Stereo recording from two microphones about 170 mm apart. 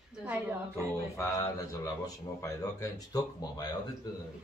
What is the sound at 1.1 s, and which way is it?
Speech, 20° left (ahead or behind).